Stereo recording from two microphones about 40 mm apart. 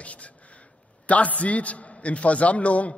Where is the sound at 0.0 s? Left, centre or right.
Left.